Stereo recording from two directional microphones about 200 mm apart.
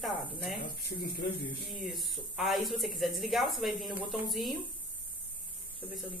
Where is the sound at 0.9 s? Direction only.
50° left (ahead or behind).